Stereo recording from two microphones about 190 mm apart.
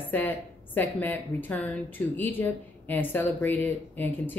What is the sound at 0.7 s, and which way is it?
Speech, 10° left (ahead or behind).